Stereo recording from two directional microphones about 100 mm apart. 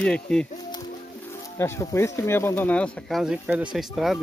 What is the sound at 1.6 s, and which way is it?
Speech, 30° left (ahead or behind).